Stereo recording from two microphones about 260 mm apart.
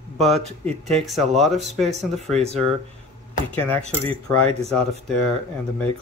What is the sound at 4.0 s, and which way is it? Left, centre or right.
Speech, centre.